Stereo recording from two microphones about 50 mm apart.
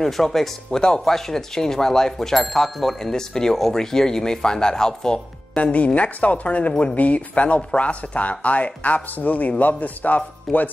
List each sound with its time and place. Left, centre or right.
0.0 s speech: centre
0.7 s speech: centre; by 10.7 s left